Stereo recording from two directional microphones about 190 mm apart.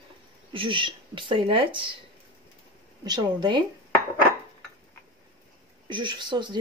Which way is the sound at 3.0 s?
20° right (ahead or behind).